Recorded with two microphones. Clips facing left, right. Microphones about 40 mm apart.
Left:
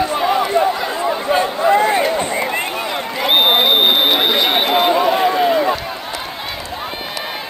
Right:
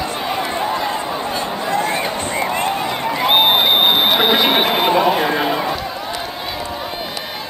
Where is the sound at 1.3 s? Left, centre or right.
Left.